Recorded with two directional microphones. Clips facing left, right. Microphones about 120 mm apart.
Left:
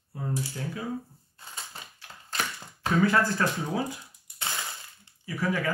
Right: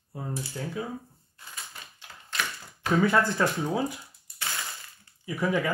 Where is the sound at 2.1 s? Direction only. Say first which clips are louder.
Right 1 dB; 15° left (ahead or behind).